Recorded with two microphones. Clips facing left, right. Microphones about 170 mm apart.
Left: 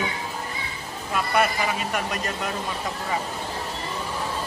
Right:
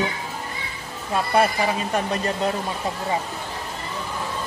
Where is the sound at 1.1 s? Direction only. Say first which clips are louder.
Right 3 dB; 30° right (ahead or behind).